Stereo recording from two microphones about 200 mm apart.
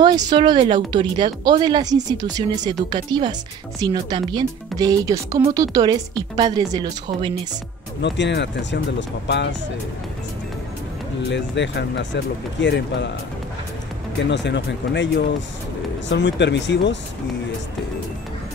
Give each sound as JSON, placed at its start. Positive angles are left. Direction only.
{"t": 0.0, "sound": "speech", "side_deg": -20}
{"t": 8.0, "sound": "speech", "side_deg": 60}
{"t": 11.2, "sound": "speech", "side_deg": 60}
{"t": 14.3, "sound": "speech", "side_deg": 60}